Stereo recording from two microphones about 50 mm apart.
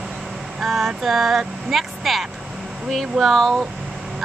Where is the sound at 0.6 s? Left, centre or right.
Centre.